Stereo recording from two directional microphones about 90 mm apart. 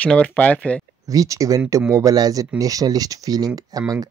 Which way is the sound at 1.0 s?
40° right (ahead or behind).